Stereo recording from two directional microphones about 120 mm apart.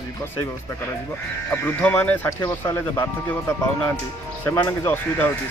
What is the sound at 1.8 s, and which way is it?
Speech, 15° left (ahead or behind).